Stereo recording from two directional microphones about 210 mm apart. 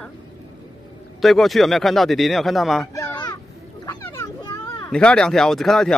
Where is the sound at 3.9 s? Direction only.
15° left (ahead or behind).